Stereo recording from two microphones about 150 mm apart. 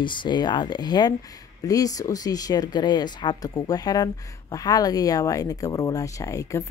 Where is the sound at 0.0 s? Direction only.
30° left (ahead or behind).